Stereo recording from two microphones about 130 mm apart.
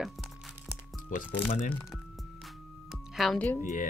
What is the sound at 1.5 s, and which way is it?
Speech, 90° left.